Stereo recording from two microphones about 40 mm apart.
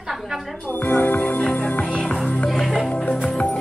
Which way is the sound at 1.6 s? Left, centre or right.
Left.